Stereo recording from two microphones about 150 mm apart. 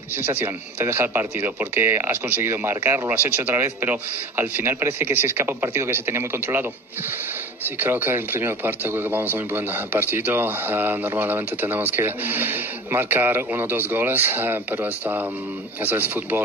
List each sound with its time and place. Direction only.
0.1 s a man's voice: 15° right (ahead or behind)
7.8 s a man's voice: 15° right (ahead or behind)